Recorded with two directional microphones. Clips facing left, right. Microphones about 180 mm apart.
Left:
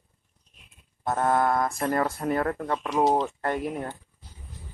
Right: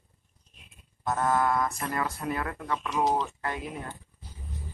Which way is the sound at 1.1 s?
35° left (ahead or behind).